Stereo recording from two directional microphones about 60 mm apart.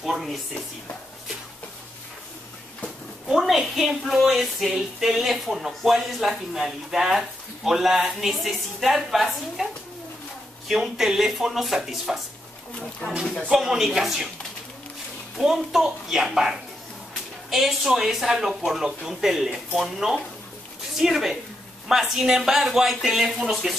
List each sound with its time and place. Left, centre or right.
0.0 s speech: centre
3.3 s speech: centre
10.7 s speech: centre
13.5 s speech: centre
15.3 s speech: centre